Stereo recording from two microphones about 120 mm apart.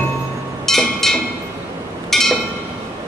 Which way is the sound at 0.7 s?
5° left (ahead or behind).